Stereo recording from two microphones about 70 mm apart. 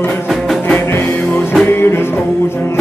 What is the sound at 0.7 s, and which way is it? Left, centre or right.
Music, left.